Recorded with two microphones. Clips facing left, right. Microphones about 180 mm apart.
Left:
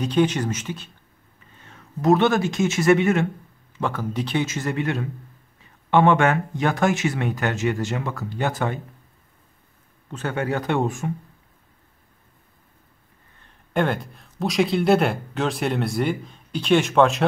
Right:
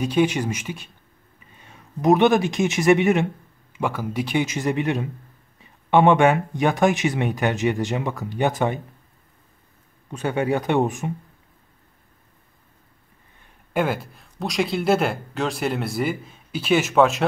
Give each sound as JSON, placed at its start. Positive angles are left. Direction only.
{"t": 0.0, "sound": "speech", "side_deg": -10}
{"t": 10.1, "sound": "speech", "side_deg": -15}
{"t": 13.4, "sound": "speech", "side_deg": -5}